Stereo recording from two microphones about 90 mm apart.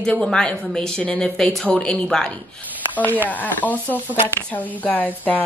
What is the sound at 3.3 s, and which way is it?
Speech, 20° left (ahead or behind).